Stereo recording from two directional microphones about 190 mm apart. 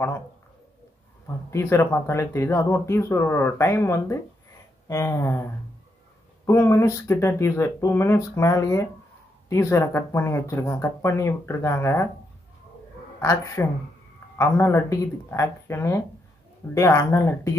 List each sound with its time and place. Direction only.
1.5 s speech: 15° left (ahead or behind)
13.2 s speech: 15° left (ahead or behind)